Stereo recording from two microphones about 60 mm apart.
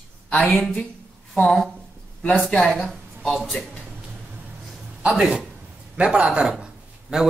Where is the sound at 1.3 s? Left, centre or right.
Centre.